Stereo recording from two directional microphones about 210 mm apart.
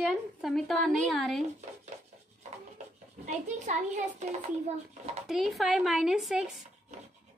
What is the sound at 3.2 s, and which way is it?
A child's voice, 35° right (ahead or behind).